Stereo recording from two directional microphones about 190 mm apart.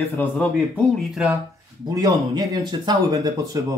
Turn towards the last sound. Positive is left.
turn(degrees=-15)  # may be behind; listen again after turning